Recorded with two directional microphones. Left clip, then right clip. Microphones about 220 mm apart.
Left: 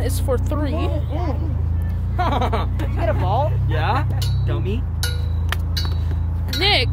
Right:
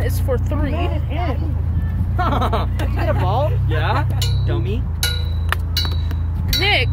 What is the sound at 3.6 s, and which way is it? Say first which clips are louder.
Speech: right 1 dB; 25° left (ahead or behind).